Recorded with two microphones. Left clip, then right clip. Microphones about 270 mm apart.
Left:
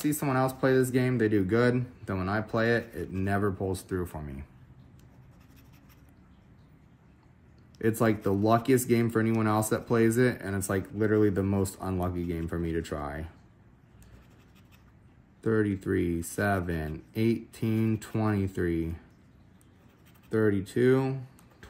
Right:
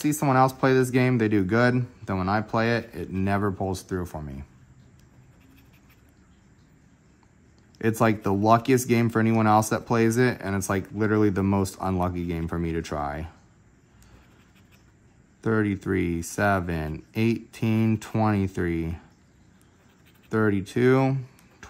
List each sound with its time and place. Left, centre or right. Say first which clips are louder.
0.0 s speech: right 7 dB; right
7.8 s speech: right 3 dB; centre
15.4 s speech: right 2 dB; centre
20.2 s speech: right 2 dB; right